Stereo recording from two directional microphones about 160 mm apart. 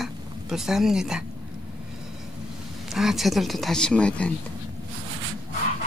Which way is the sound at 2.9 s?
Centre (ahead or behind).